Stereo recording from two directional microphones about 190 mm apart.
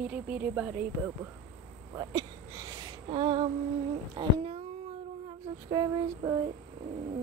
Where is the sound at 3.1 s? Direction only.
30° right (ahead or behind).